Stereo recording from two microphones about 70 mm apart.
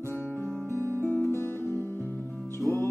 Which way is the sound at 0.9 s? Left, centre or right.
Left.